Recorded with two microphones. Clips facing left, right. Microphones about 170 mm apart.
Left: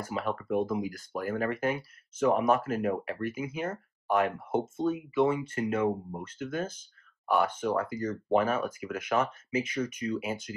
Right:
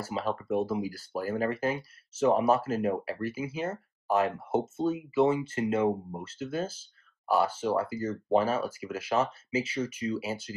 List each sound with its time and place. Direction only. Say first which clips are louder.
0.0 s speech: right 1 dB; 30° right (ahead or behind)